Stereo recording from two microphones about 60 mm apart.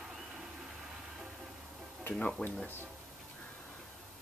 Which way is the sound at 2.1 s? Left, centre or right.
Centre.